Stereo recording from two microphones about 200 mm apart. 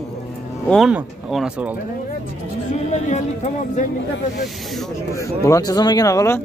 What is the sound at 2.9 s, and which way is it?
Speech, 35° left (ahead or behind).